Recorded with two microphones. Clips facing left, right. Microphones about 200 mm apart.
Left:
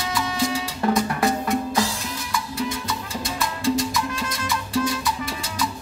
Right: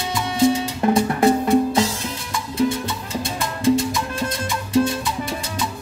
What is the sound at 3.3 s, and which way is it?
Music, 25° right (ahead or behind).